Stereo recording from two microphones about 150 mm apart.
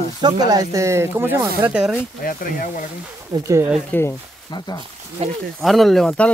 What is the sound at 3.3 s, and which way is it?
Speech, 20° right (ahead or behind).